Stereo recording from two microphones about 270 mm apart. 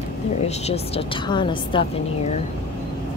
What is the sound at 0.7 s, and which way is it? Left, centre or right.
A woman's voice, centre.